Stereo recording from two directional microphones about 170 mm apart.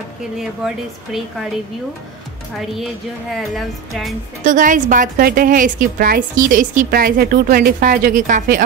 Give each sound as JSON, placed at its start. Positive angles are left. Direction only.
{"t": 0.4, "sound": "a woman's voice", "side_deg": -5}
{"t": 2.5, "sound": "a woman's voice", "side_deg": 0}
{"t": 4.5, "sound": "a woman's voice", "side_deg": -50}